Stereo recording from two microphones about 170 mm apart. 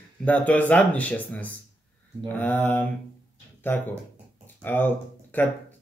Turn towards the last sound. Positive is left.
turn(degrees=10)  # may be behind; listen again after turning